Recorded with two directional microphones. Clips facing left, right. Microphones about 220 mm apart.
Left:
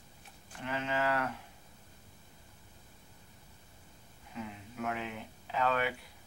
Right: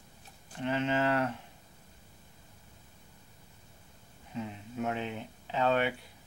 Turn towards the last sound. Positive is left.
turn(degrees=-25)  # may be behind; listen again after turning